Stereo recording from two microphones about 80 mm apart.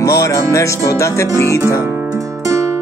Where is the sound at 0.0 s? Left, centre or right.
Left.